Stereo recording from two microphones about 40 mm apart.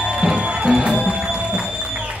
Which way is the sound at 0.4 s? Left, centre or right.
Right.